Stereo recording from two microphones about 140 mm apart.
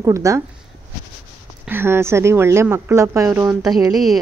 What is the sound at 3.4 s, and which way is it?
Speech, centre (ahead or behind).